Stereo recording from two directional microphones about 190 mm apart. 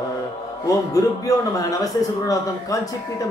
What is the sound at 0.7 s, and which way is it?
A man's voice, 15° left (ahead or behind).